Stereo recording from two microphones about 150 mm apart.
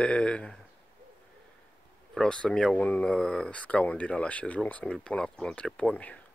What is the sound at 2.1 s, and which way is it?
Speech, 5° left (ahead or behind).